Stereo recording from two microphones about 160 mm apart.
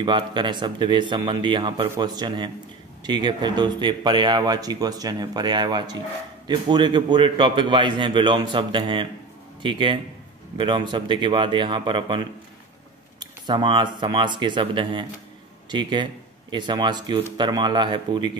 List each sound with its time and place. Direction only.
0.0 s speech: 30° right (ahead or behind)